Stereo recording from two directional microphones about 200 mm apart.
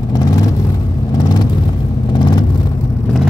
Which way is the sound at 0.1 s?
20° left (ahead or behind).